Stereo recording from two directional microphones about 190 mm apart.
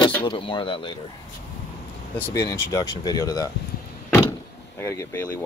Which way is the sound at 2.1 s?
10° left (ahead or behind).